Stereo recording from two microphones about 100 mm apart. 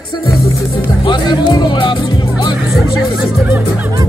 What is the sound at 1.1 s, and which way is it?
Music, 50° left (ahead or behind).